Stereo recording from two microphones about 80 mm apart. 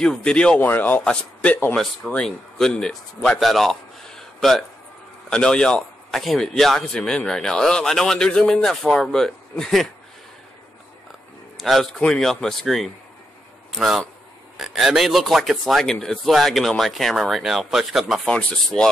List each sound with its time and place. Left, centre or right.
0.0 s a man's voice: centre
0.6 s a man's voice: left; by 9.8 s centre
11.5 s a man's voice: centre
13.7 s a man's voice: centre
18.3 s a man's voice: centre